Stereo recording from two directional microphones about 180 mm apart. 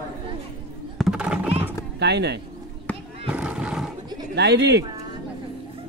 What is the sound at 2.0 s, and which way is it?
Speech, 70° right (ahead or behind).